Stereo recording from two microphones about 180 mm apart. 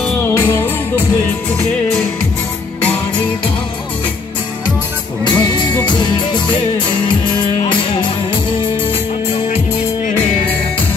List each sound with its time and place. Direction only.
0.2 s music: 15° left (ahead or behind)
5.2 s music: 25° left (ahead or behind)